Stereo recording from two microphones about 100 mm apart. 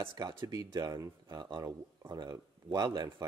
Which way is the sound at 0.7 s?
40° right (ahead or behind).